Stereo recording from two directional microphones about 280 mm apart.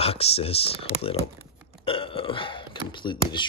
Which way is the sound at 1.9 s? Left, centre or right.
Centre.